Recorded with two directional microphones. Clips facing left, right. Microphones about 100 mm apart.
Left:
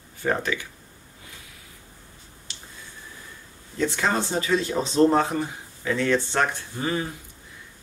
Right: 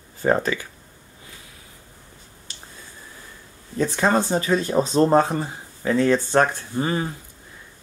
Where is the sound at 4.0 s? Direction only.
40° right (ahead or behind).